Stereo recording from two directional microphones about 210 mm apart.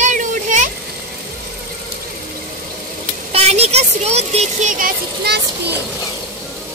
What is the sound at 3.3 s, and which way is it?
Speech, 30° right (ahead or behind).